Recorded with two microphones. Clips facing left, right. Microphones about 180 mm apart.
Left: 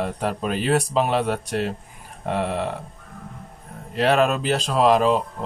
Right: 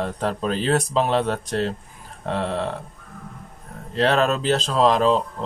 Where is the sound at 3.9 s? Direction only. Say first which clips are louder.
Left 1 dB; 10° left (ahead or behind).